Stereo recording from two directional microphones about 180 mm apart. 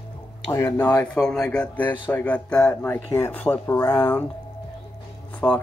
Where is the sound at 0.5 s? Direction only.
15° left (ahead or behind).